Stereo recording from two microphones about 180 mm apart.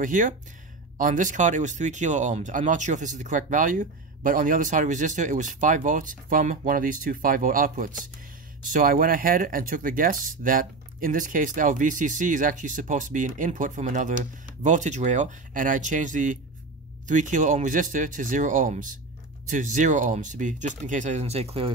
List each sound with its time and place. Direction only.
0.0 s speech: 45° right (ahead or behind)